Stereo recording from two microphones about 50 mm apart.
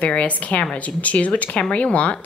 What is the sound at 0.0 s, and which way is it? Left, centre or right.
Speech, left.